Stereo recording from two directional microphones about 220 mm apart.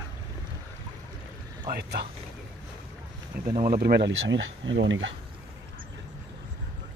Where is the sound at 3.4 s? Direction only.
40° right (ahead or behind); by 5.2 s 60° right (ahead or behind).